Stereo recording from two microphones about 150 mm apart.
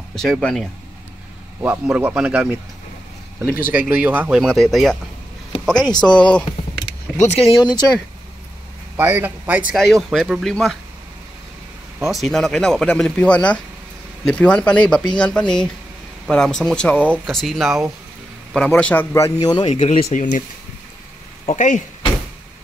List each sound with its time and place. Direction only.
0.1 s speech: 5° left (ahead or behind)
1.6 s speech: 10° right (ahead or behind)
3.7 s speech: 10° right (ahead or behind); by 6.4 s 5° left (ahead or behind)
7.2 s speech: 45° left (ahead or behind)
7.6 s speech: 25° left (ahead or behind)
8.9 s speech: 10° right (ahead or behind)
12.1 s speech: centre (ahead or behind)
19.4 s speech: 25° left (ahead or behind)
19.7 s speech: 45° left (ahead or behind)
21.5 s speech: 55° left (ahead or behind)